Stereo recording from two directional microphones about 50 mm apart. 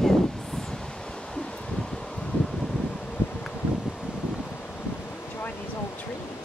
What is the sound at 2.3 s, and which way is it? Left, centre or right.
Wind, left.